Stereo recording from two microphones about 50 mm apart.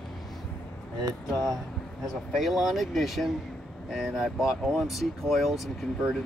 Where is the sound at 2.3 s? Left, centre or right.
Centre.